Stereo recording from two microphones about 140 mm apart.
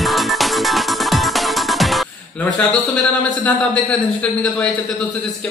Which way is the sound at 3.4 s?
10° left (ahead or behind).